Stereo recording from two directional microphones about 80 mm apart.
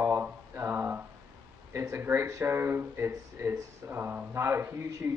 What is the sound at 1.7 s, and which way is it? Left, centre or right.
Speech, right.